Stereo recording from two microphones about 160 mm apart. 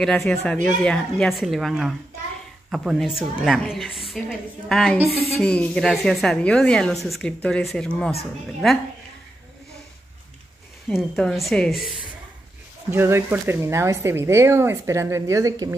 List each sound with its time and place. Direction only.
0.0 s a woman's voice: 5° left (ahead or behind)
10.9 s a woman's voice: centre (ahead or behind)
12.9 s speech: 15° right (ahead or behind)